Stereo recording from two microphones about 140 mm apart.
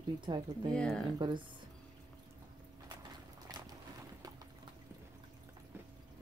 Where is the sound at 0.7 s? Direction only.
5° left (ahead or behind).